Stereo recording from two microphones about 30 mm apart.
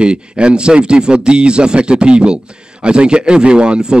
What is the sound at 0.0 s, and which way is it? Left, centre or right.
Speech, right.